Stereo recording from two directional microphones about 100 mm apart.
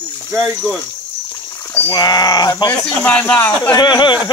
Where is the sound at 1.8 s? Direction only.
45° left (ahead or behind).